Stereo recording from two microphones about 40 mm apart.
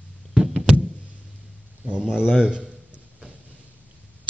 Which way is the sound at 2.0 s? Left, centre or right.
Centre.